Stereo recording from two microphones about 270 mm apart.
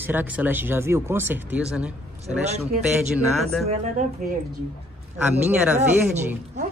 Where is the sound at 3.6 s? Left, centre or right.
Right.